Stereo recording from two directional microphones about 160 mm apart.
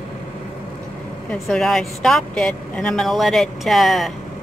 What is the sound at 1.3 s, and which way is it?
A woman's voice, 5° left (ahead or behind).